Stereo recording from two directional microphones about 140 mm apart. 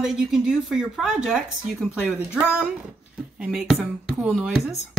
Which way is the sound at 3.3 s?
5° right (ahead or behind).